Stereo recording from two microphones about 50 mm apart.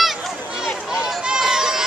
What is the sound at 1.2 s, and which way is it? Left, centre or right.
Run, centre.